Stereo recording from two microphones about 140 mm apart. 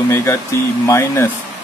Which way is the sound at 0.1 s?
20° left (ahead or behind).